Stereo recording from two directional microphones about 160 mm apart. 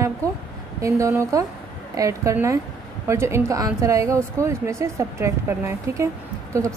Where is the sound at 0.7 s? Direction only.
20° right (ahead or behind).